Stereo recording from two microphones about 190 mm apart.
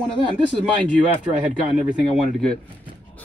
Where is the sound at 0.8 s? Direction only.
40° right (ahead or behind).